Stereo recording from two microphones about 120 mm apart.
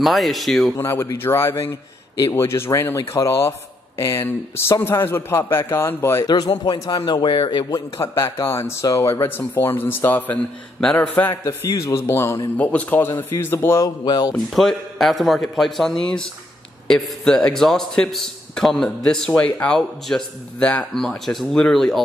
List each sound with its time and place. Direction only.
0.0 s a man's voice: centre (ahead or behind)
0.7 s a man's voice: 20° left (ahead or behind)
6.2 s speech: 35° left (ahead or behind)
8.0 s a man's voice: 20° left (ahead or behind)
11.4 s a man's voice: 25° left (ahead or behind)
13.8 s speech: 35° left (ahead or behind)
14.3 s a man's voice: 5° left (ahead or behind)